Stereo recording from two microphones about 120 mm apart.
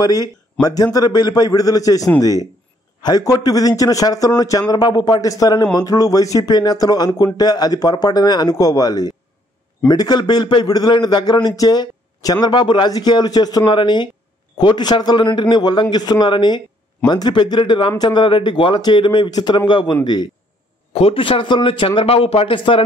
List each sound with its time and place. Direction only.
0.0 s a man's voice: 30° left (ahead or behind)
20.9 s speech: 50° left (ahead or behind)